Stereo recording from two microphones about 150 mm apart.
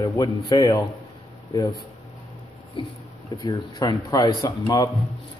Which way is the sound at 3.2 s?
25° left (ahead or behind).